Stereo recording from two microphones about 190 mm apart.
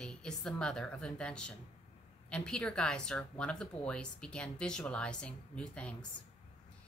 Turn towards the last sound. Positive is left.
turn(degrees=5)  # may be behind; listen again after turning